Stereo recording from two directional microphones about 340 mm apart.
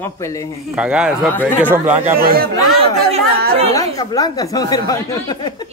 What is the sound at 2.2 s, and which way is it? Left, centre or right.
Speech, right.